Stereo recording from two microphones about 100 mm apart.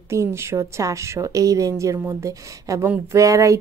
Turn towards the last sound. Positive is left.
turn(degrees=-35)  # may be behind; listen again after turning